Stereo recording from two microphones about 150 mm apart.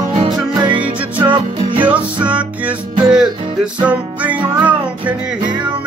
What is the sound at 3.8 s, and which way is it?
Music, 10° right (ahead or behind).